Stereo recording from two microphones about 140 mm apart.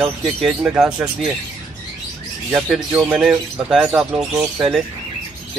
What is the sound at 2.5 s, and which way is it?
Speech, 10° right (ahead or behind).